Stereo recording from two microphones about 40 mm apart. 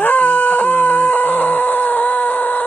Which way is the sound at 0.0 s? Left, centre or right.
Left.